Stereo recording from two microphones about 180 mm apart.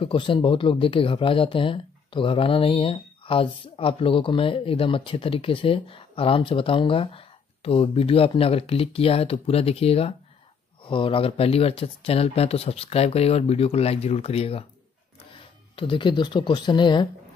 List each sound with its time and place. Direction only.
0.0 s speech: 30° left (ahead or behind)
15.7 s speech: 30° left (ahead or behind)